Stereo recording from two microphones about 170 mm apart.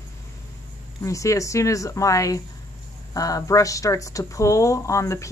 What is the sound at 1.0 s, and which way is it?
Speech, 20° left (ahead or behind).